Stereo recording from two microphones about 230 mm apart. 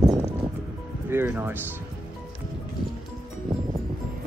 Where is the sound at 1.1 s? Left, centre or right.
Centre.